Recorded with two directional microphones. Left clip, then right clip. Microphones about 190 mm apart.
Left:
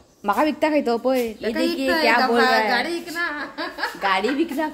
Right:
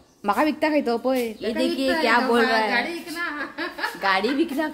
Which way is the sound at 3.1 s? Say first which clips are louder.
Left 2 dB; 30° left (ahead or behind).